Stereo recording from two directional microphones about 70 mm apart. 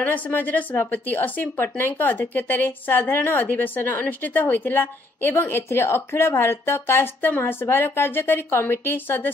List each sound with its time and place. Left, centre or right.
0.0 s a woman's voice: left